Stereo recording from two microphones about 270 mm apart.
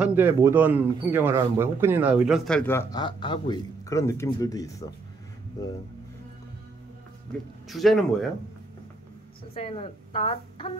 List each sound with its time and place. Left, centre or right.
0.0 s speech: centre
7.6 s speech: centre
9.5 s a woman's voice: left